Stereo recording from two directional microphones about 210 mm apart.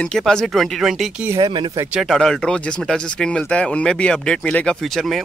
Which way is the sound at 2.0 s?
Centre (ahead or behind).